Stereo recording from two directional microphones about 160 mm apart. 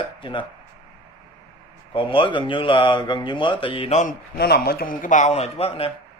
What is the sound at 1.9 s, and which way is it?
Speech, 30° left (ahead or behind).